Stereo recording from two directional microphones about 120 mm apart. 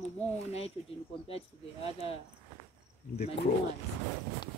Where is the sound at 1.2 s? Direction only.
55° left (ahead or behind).